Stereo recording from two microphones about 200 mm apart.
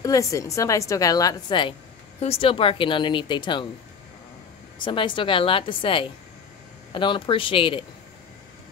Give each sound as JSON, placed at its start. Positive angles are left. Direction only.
{"t": 0.0, "sound": "a woman's voice", "side_deg": 15}
{"t": 4.7, "sound": "a woman's voice", "side_deg": 25}